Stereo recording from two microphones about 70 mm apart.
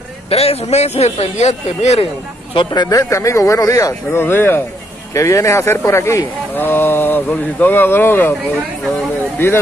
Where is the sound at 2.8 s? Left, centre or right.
Left.